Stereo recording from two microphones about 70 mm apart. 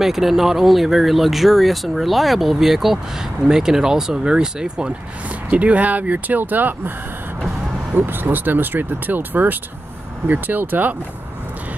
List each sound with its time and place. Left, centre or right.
0.0 s speech: centre; by 6.9 s right
7.9 s speech: right